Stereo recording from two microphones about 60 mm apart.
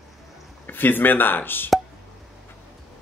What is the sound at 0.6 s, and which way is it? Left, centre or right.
Speech, left.